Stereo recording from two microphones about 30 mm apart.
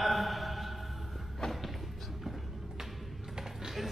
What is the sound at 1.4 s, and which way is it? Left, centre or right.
Thump, centre.